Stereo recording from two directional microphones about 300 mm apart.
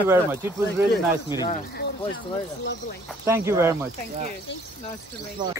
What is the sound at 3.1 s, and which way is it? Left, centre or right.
Speech, centre.